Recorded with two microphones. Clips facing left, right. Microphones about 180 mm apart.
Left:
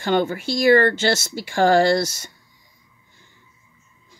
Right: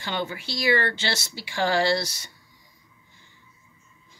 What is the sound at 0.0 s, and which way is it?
Speech, 50° left (ahead or behind).